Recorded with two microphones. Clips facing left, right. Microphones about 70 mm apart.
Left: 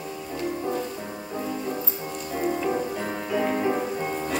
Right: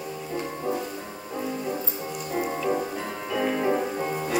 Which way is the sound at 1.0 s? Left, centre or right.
Centre.